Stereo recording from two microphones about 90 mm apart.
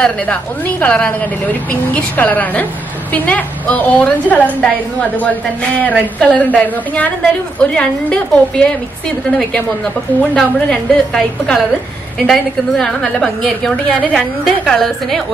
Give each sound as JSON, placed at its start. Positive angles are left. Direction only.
{"t": 0.0, "sound": "a woman's voice", "side_deg": 15}
{"t": 5.8, "sound": "a woman's voice", "side_deg": 15}
{"t": 10.3, "sound": "a woman's voice", "side_deg": 10}
{"t": 14.1, "sound": "a woman's voice", "side_deg": 0}